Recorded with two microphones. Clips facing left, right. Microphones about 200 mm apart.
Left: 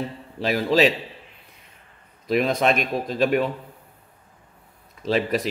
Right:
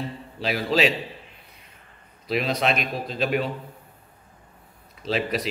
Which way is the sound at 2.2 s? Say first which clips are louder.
Left 4 dB; 50° left (ahead or behind).